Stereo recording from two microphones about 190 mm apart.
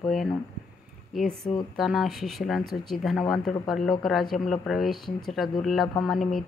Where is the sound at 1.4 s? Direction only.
20° left (ahead or behind).